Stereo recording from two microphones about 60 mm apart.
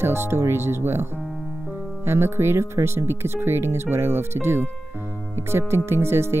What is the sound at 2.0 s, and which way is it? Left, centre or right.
Speech, right.